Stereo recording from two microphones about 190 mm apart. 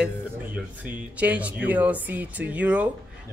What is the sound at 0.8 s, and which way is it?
Speech, 10° right (ahead or behind).